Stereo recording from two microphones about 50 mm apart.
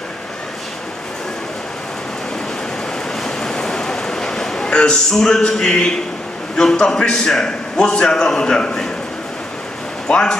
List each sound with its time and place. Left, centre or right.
3.3 s a sound: centre
4.6 s a man's voice: centre
10.0 s speech: centre